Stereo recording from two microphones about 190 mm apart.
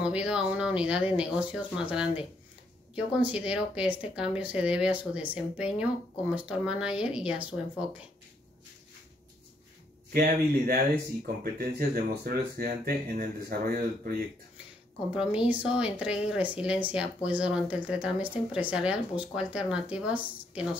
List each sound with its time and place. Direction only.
0.0 s speech: 5° right (ahead or behind)
10.1 s speech: 50° right (ahead or behind)
15.1 s speech: 5° right (ahead or behind)